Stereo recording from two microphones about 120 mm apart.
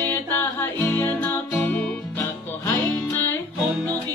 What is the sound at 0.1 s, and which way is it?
Music, 20° left (ahead or behind).